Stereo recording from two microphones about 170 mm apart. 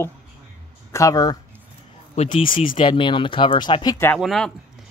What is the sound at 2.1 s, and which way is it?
Speech, 35° left (ahead or behind).